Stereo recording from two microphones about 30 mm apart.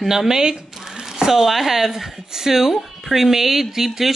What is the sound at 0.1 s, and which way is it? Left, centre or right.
Speech, centre.